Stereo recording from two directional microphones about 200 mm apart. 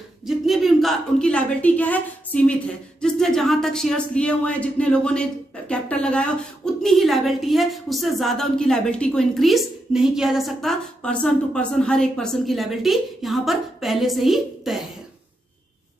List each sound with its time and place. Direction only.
0.5 s a woman's voice: centre (ahead or behind)